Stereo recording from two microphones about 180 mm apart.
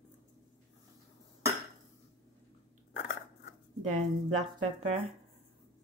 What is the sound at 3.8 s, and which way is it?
Speech, 40° right (ahead or behind).